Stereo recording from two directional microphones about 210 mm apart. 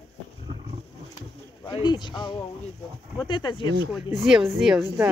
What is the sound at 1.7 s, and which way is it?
Speech, 20° left (ahead or behind).